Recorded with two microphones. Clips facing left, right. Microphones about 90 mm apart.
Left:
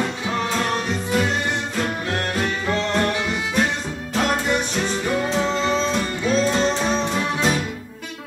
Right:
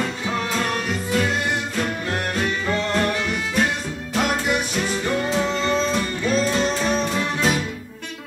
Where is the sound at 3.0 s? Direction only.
5° left (ahead or behind).